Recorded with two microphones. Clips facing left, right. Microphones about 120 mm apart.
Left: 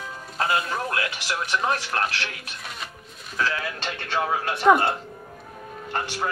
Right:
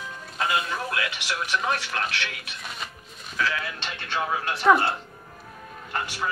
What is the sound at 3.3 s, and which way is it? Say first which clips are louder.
Speech: left 1 dB; 40° left (ahead or behind).